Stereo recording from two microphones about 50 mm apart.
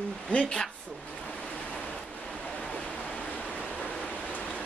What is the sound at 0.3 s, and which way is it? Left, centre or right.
Speech, left.